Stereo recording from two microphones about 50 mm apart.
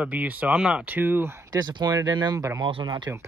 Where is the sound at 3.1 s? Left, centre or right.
Right.